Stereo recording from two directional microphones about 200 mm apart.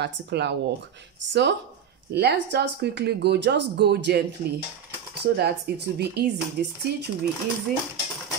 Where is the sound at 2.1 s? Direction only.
55° right (ahead or behind).